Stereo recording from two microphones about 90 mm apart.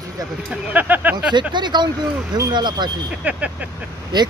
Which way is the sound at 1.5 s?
55° right (ahead or behind).